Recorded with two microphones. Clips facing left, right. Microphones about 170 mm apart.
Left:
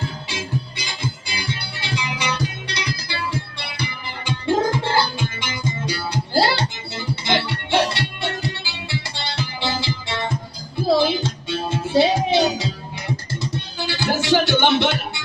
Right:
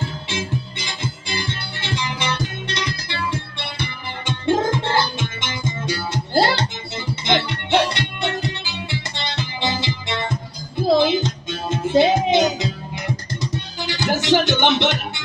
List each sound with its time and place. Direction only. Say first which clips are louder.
0.3 s music: right 2 dB; 20° right (ahead or behind)